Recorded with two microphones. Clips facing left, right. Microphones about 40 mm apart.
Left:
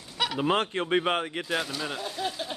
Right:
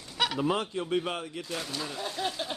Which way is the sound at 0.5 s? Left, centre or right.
Left.